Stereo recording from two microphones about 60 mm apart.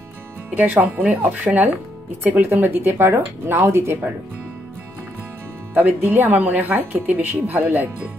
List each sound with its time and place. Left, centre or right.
1.0 s speech: right
5.8 s speech: right